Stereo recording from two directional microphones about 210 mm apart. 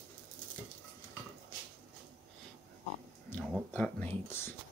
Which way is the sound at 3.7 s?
10° left (ahead or behind).